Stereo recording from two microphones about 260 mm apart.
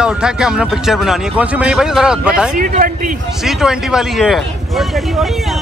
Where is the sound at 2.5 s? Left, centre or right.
Right.